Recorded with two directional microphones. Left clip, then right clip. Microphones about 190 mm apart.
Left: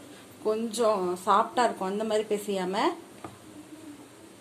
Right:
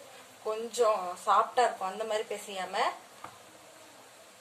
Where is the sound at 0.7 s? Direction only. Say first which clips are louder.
Even; 35° left (ahead or behind).